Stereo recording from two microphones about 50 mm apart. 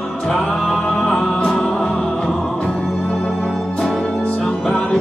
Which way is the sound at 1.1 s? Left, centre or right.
Centre.